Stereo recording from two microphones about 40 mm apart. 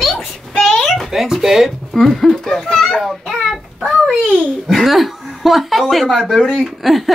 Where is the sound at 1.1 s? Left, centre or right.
Centre.